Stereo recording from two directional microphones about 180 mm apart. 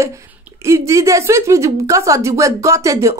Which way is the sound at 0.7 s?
15° right (ahead or behind).